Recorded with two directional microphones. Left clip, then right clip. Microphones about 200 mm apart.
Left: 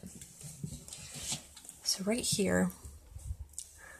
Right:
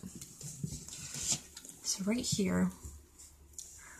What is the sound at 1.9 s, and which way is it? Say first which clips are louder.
Speech: left 3 dB; 50° left (ahead or behind).